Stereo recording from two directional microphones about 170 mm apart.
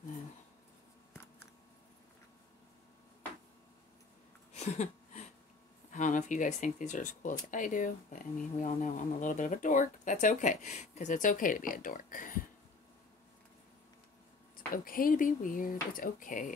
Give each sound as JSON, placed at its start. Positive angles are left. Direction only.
{"t": 4.6, "sound": "a sound", "side_deg": 40}
{"t": 5.9, "sound": "speech", "side_deg": 50}
{"t": 14.7, "sound": "speech", "side_deg": 55}